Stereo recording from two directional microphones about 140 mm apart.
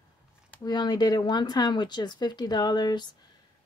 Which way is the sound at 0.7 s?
30° left (ahead or behind).